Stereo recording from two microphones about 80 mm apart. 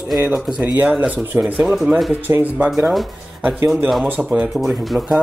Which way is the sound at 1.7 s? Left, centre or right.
Centre.